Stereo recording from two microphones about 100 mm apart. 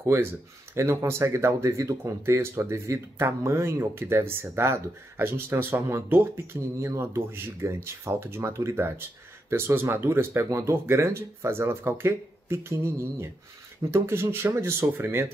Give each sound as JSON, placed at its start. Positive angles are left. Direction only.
{"t": 0.0, "sound": "speech", "side_deg": -25}